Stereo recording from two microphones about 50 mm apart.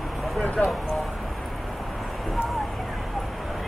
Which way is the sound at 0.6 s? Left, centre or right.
Left.